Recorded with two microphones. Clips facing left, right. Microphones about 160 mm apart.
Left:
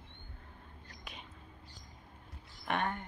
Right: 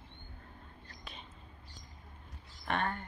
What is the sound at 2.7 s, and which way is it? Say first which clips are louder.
Speech: even; 15° left (ahead or behind).